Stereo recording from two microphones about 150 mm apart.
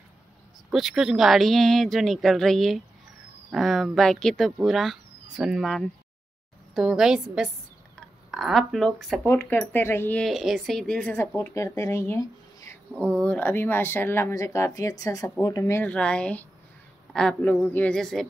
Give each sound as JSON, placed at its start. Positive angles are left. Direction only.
{"t": 0.7, "sound": "speech", "side_deg": -5}
{"t": 9.2, "sound": "speech", "side_deg": 15}
{"t": 10.2, "sound": "speech", "side_deg": 0}
{"t": 11.1, "sound": "speech", "side_deg": 15}
{"t": 13.0, "sound": "speech", "side_deg": 10}